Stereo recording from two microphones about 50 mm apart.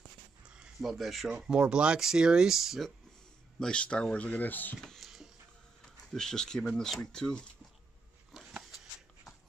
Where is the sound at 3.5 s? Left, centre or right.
Centre; by 4.7 s left.